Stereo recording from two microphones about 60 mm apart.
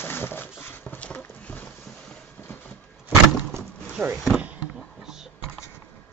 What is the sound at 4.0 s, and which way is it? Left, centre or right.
Speech, centre.